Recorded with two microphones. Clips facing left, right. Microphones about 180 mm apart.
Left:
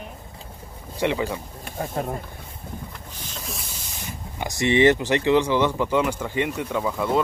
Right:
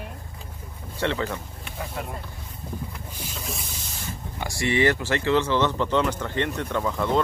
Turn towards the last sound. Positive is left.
turn(degrees=10)  # may be behind; listen again after turning